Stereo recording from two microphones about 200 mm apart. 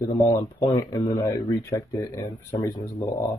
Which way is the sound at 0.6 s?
15° left (ahead or behind).